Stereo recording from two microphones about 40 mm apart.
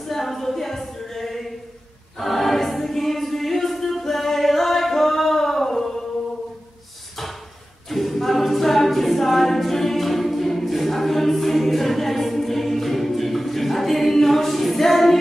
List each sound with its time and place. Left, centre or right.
0.1 s a sound: centre
2.1 s choir: centre
7.9 s a capella: centre